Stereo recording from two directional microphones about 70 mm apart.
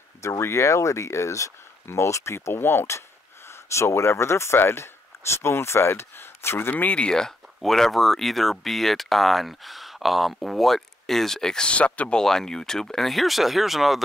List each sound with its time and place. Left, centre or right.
0.2 s speech: left; by 14.0 s centre